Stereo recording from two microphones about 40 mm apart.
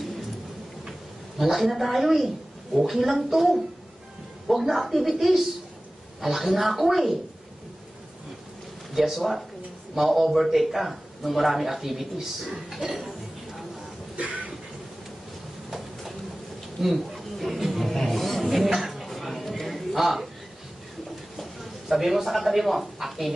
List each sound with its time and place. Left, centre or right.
1.4 s a man's voice: centre
8.9 s a man's voice: centre
14.1 s a sound: right
15.7 s a sound: centre
18.7 s music: centre
21.4 s speech: centre